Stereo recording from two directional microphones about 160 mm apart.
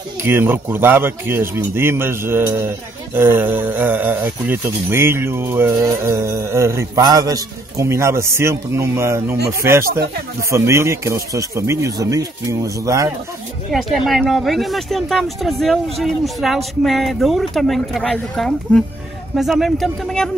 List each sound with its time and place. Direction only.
0.2 s speech: 15° right (ahead or behind)
13.7 s speech: centre (ahead or behind)